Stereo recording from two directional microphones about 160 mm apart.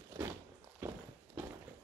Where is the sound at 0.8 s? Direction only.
15° right (ahead or behind).